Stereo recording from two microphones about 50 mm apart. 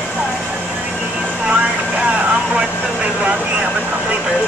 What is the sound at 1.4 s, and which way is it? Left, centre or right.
Vehicle, right.